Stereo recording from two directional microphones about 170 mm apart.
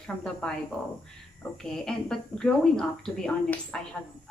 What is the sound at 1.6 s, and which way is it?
Speech, 5° left (ahead or behind).